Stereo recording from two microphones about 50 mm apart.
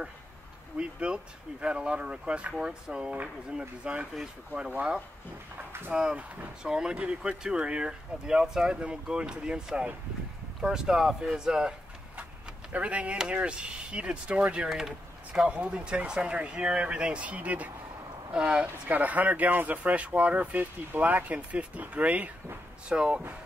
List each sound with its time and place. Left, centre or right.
0.9 s speech: right
12.7 s speech: right
14.7 s speech: centre
15.4 s speech: right
18.9 s speech: right